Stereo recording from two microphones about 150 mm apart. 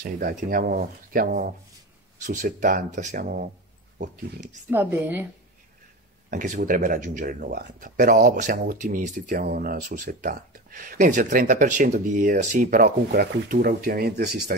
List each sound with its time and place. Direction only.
0.0 s speech: 70° right (ahead or behind)
2.2 s speech: 60° right (ahead or behind)
4.6 s a woman's voice: 15° right (ahead or behind)
6.3 s speech: 65° right (ahead or behind); by 14.3 s 90° right